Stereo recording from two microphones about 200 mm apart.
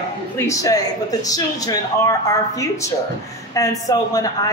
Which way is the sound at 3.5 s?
15° left (ahead or behind).